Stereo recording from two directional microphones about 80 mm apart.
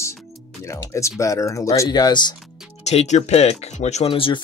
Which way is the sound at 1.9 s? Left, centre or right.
Left.